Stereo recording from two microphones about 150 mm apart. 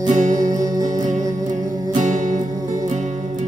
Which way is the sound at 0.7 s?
25° right (ahead or behind).